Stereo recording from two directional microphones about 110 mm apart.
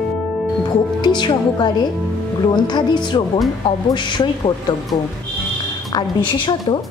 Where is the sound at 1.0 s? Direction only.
40° left (ahead or behind).